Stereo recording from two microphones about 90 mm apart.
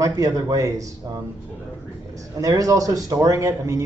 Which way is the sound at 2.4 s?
40° right (ahead or behind).